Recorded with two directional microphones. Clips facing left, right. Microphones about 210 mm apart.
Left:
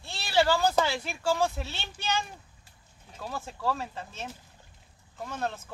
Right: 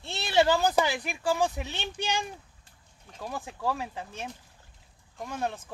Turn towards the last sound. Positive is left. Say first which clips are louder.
# right 1 dB
turn(degrees=-15)  # may be behind; listen again after turning